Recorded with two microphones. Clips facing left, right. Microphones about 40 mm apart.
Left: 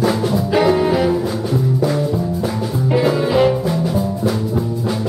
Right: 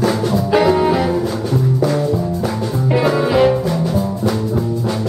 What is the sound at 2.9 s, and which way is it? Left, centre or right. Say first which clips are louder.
Music: right 1 dB; centre.